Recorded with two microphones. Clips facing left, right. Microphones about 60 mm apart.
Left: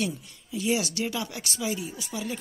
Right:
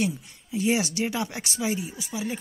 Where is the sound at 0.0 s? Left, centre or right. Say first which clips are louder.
Right 3 dB; right.